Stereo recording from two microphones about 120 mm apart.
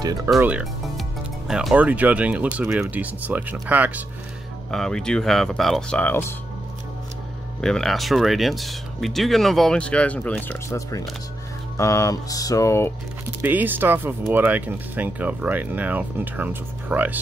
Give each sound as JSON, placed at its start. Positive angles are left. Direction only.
{"t": 0.0, "sound": "speech", "side_deg": -30}
{"t": 0.4, "sound": "speech", "side_deg": -10}
{"t": 4.6, "sound": "speech", "side_deg": 5}
{"t": 7.6, "sound": "speech", "side_deg": 5}
{"t": 10.7, "sound": "music", "side_deg": 30}
{"t": 13.4, "sound": "speech", "side_deg": -15}